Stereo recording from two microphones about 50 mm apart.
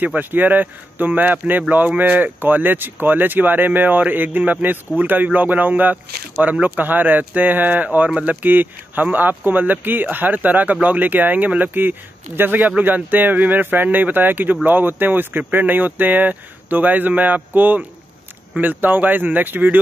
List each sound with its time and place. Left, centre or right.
0.0 s speech: right